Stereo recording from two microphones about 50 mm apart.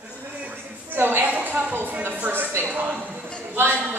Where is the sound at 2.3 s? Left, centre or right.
Right.